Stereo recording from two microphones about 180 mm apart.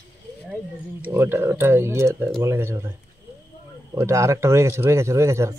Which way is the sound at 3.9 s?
15° right (ahead or behind).